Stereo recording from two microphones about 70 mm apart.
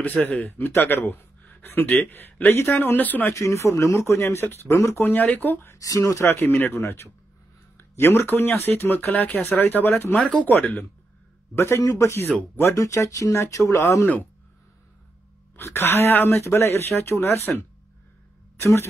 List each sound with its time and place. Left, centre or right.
0.0 s speech: left
3.3 s speech: left
5.1 s speech: left
5.7 s speech: left
10.2 s speech: centre
11.5 s speech: left
15.6 s speech: left
18.6 s speech: left